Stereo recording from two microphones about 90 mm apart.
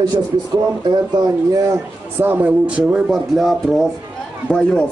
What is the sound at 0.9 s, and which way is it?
Speech, 55° right (ahead or behind).